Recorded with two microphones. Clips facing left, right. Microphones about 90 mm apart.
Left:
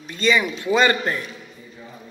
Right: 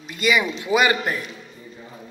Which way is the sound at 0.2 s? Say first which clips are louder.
Left 1 dB; 10° right (ahead or behind).